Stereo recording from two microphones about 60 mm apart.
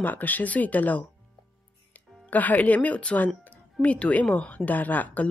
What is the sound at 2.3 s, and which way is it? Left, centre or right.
Speech, left.